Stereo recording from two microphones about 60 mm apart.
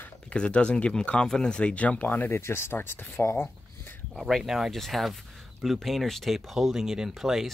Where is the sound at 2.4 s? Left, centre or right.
Left.